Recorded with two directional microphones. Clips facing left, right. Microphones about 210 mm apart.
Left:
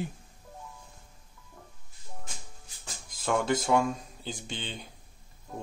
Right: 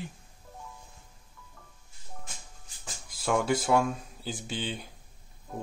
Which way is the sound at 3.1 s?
10° right (ahead or behind).